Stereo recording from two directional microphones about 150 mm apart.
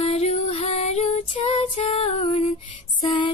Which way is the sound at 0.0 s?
40° left (ahead or behind).